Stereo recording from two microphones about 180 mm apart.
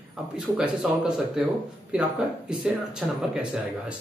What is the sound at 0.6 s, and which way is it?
Speech, 5° right (ahead or behind).